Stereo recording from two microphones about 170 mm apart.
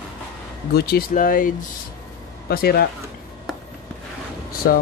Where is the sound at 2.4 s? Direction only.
65° left (ahead or behind).